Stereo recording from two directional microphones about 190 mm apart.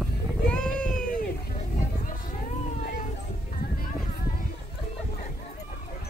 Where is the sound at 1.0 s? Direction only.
50° left (ahead or behind).